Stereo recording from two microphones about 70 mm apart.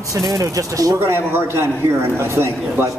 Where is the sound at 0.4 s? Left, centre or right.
Right.